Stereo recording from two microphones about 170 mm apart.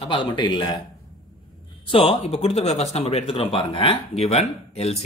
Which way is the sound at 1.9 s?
35° left (ahead or behind).